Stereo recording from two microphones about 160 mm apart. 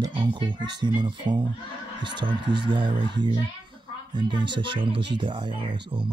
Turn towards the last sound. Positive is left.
turn(degrees=-30)  # may be behind; listen again after turning